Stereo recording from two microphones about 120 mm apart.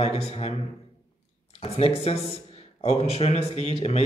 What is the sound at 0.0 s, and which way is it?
Speech, 60° left (ahead or behind).